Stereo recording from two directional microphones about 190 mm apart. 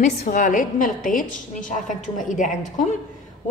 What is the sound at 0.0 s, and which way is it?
A woman's voice, 40° left (ahead or behind).